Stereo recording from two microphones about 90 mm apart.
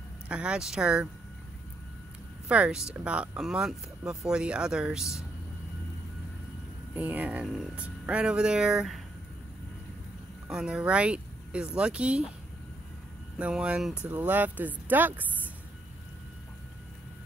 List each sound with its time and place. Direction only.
0.3 s speech: 10° right (ahead or behind)
2.4 s speech: 10° right (ahead or behind)
7.0 s speech: 15° right (ahead or behind)
10.5 s speech: 10° right (ahead or behind)
13.4 s speech: 10° right (ahead or behind)
14.0 s speech: 20° right (ahead or behind)